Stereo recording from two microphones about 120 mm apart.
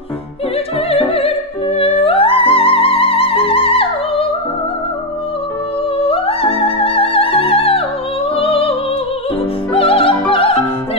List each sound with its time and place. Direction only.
0.8 s music: 50° left (ahead or behind)
5.9 s music: 50° left (ahead or behind)
9.8 s music: 50° left (ahead or behind)